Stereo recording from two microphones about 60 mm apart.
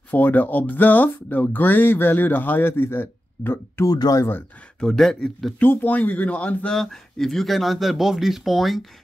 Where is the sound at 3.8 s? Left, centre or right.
Left.